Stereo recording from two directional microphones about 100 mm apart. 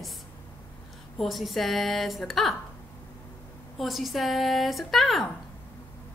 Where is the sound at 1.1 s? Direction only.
Centre (ahead or behind).